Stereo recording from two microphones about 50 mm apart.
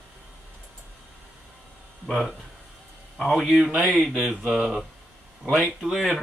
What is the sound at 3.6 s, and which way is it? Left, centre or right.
Speech, right.